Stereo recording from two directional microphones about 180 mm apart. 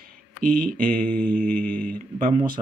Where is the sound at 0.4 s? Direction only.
50° right (ahead or behind).